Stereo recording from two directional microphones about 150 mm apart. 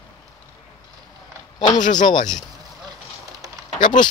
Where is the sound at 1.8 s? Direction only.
55° left (ahead or behind).